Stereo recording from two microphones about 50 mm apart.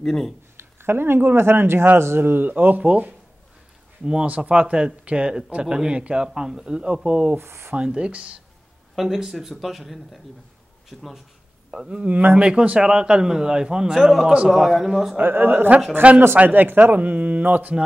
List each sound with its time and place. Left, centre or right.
0.0 s speech: centre
0.6 s speech: right
4.0 s speech: centre
7.3 s speech: right
7.7 s speech: centre
8.9 s speech: centre
11.7 s a man's voice: centre
12.1 s speech: right
12.4 s a man's voice: centre
15.1 s speech: right
16.0 s speech: right
16.4 s speech: right